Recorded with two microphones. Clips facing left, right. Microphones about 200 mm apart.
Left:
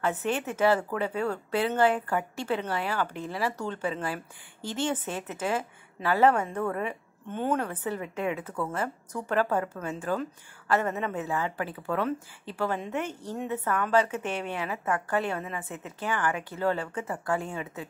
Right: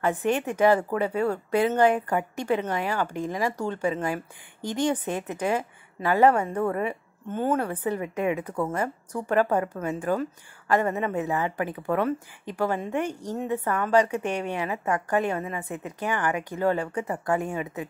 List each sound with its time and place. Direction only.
0.0 s a woman's voice: 15° right (ahead or behind)